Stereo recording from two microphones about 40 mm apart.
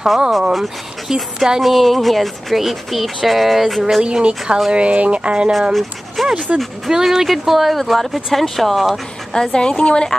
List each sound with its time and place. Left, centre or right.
0.4 s speech: centre
4.0 s speech: right
5.5 s speech: centre
6.5 s speech: right
6.9 s speech: centre
9.3 s a woman's voice: centre